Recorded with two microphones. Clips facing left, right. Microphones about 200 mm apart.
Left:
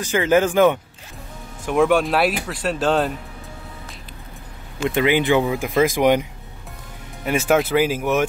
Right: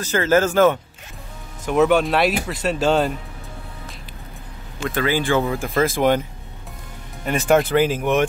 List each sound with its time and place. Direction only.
0.0 s speech: 15° left (ahead or behind)
1.7 s speech: centre (ahead or behind)
4.7 s speech: 20° left (ahead or behind)
7.2 s speech: 5° left (ahead or behind)